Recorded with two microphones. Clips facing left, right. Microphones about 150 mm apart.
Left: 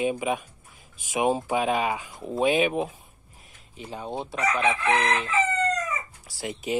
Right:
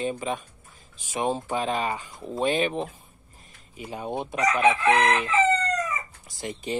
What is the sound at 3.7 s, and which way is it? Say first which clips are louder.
Speech: right 2 dB; 10° right (ahead or behind).